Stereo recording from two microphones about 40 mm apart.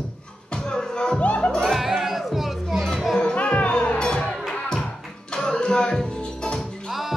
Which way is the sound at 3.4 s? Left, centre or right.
Left.